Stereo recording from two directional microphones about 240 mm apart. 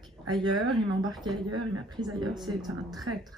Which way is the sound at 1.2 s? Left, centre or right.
Right.